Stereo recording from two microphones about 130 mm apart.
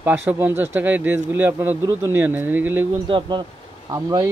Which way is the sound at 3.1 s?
40° right (ahead or behind).